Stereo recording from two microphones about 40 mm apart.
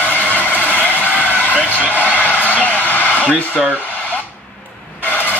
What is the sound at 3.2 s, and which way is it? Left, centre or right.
Speech, left.